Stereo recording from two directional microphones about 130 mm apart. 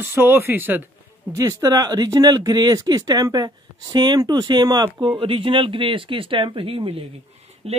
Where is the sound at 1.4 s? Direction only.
25° right (ahead or behind).